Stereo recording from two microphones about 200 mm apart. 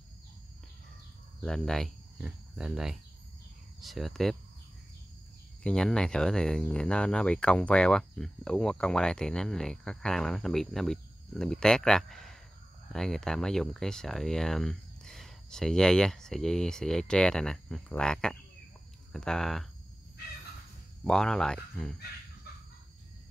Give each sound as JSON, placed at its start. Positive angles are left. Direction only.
{"t": 1.4, "sound": "speech", "side_deg": 5}
{"t": 5.6, "sound": "speech", "side_deg": 5}
{"t": 21.0, "sound": "speech", "side_deg": 5}